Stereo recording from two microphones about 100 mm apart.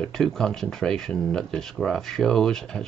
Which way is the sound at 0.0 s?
5° left (ahead or behind).